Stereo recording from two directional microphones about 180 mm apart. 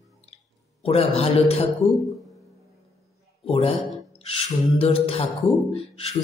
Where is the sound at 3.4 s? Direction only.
30° left (ahead or behind).